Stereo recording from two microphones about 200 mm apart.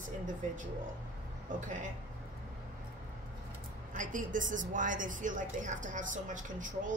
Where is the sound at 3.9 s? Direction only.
40° right (ahead or behind).